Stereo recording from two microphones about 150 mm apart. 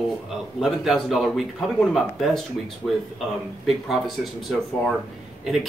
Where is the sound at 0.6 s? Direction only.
Centre (ahead or behind).